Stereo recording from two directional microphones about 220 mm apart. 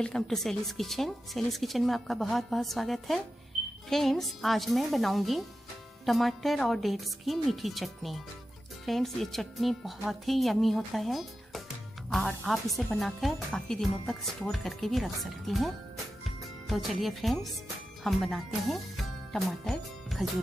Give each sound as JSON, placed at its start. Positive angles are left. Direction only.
{"t": 0.0, "sound": "speech", "side_deg": 0}